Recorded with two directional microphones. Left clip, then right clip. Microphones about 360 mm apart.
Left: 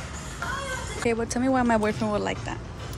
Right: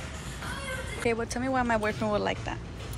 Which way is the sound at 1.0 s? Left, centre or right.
Centre.